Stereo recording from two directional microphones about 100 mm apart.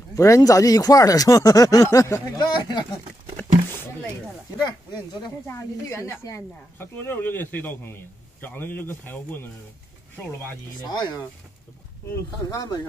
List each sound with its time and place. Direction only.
0.1 s speech: 35° left (ahead or behind)
2.3 s speech: 45° left (ahead or behind)
5.5 s speech: 30° left (ahead or behind)
10.9 s speech: 45° left (ahead or behind)
12.4 s speech: 35° left (ahead or behind)